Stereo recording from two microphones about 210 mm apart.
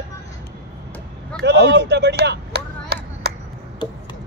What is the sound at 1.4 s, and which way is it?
Chop, 55° right (ahead or behind).